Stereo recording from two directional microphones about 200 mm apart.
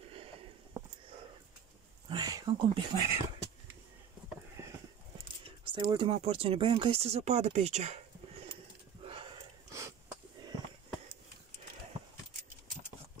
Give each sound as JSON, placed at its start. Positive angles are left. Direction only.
{"t": 0.8, "sound": "a sound", "side_deg": -15}
{"t": 2.0, "sound": "speech", "side_deg": -20}
{"t": 4.6, "sound": "clip-clop", "side_deg": -15}
{"t": 5.8, "sound": "speech", "side_deg": -25}
{"t": 9.0, "sound": "sniff", "side_deg": -25}
{"t": 9.7, "sound": "a sound", "side_deg": -15}